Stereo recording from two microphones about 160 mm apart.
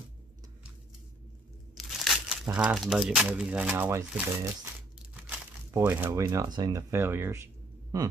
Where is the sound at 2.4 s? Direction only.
5° right (ahead or behind).